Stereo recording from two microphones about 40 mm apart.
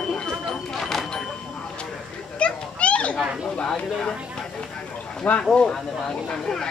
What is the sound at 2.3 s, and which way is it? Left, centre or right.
Children playing, left.